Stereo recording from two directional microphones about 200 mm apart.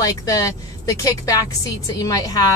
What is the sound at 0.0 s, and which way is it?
A woman's voice, 15° left (ahead or behind).